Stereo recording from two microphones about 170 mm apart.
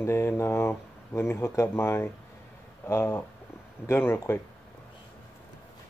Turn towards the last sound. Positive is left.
turn(degrees=15)  # may be behind; listen again after turning